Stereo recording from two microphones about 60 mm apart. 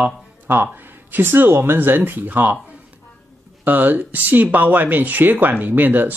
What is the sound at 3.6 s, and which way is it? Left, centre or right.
Speech, right.